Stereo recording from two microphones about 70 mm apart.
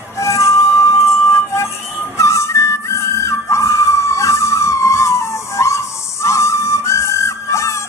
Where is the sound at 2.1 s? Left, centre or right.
Left.